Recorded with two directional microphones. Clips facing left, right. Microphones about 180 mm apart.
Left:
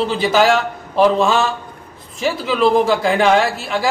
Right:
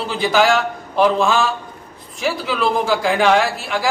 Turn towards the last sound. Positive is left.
turn(degrees=0)  # may be behind; listen again after turning